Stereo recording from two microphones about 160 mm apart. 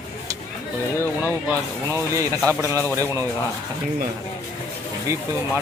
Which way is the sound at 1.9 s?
20° right (ahead or behind).